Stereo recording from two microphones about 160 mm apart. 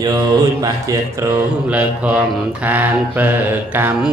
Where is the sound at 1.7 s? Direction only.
10° right (ahead or behind).